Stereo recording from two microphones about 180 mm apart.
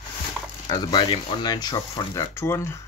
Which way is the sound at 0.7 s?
20° left (ahead or behind).